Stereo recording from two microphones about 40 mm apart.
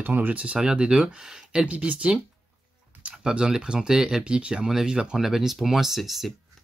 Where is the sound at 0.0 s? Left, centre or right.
Right.